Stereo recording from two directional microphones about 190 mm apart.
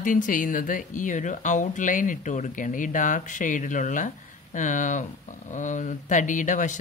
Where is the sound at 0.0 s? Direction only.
45° left (ahead or behind).